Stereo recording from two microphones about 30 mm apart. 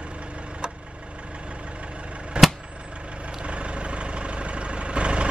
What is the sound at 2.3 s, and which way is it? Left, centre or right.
Vehicle, right.